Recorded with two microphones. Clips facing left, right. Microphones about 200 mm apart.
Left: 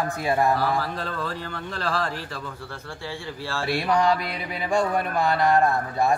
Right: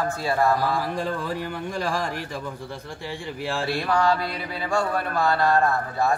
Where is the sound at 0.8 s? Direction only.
15° right (ahead or behind).